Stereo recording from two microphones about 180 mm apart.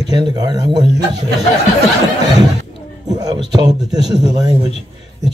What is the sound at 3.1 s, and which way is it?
Speech, 20° right (ahead or behind).